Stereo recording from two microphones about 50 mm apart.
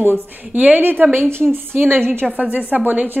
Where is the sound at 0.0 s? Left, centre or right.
Right.